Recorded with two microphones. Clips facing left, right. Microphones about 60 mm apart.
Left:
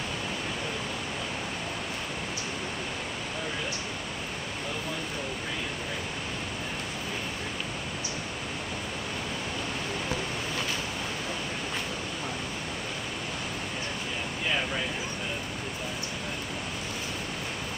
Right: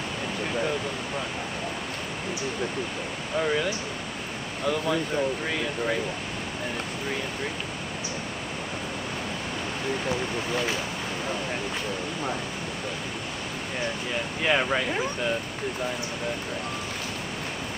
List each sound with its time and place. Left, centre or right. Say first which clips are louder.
14.4 s speech: right 6 dB; right